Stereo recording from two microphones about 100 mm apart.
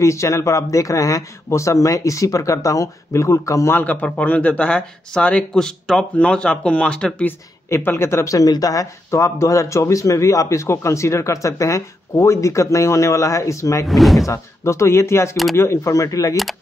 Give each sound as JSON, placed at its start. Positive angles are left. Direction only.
{"t": 0.0, "sound": "a woman's voice", "side_deg": 30}
{"t": 3.8, "sound": "speech", "side_deg": 15}
{"t": 7.2, "sound": "a woman's voice", "side_deg": 20}
{"t": 13.8, "sound": "speech", "side_deg": 0}
{"t": 14.2, "sound": "a woman's voice", "side_deg": 30}